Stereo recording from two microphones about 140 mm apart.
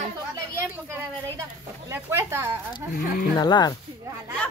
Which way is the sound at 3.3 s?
30° left (ahead or behind).